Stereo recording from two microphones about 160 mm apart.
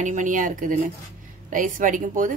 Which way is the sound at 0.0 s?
50° right (ahead or behind).